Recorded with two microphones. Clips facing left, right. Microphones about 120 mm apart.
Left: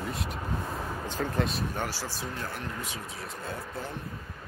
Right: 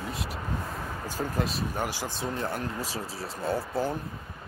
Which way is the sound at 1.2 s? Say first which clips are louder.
Even; 10° right (ahead or behind).